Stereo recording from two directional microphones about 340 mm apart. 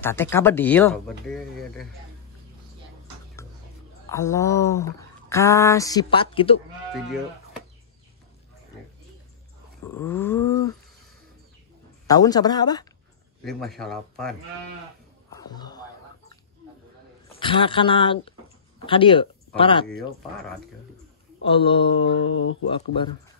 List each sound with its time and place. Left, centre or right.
0.0 s speech: centre
4.1 s speech: centre
9.8 s speech: centre
12.1 s speech: centre
13.4 s speech: centre
15.3 s a sound: centre
17.4 s speech: centre
21.5 s speech: centre
22.1 s speech: left